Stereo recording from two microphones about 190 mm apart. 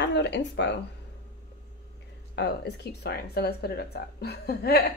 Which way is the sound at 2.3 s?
60° left (ahead or behind).